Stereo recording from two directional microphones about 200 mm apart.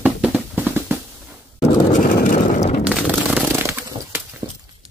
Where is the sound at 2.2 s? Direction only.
40° left (ahead or behind).